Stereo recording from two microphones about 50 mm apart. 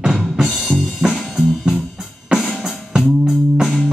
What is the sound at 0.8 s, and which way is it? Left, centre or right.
Music, centre.